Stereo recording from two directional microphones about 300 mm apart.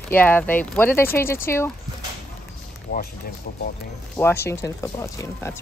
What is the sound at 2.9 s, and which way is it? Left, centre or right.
Speech, left.